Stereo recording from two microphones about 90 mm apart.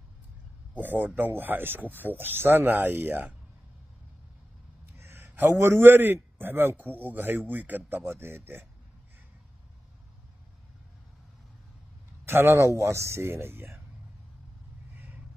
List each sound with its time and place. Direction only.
0.7 s speech: 20° right (ahead or behind)
4.8 s a man's voice: 25° right (ahead or behind)
12.3 s speech: 25° right (ahead or behind)